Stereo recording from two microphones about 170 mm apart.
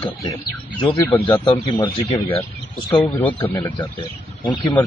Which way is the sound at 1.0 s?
15° left (ahead or behind).